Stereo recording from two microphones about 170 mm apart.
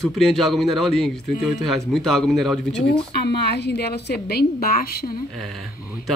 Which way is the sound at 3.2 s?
80° left.